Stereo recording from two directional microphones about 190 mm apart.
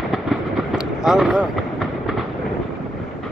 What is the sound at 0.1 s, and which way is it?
Vehicle, centre (ahead or behind).